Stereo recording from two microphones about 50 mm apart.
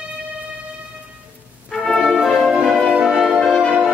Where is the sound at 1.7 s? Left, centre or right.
Centre.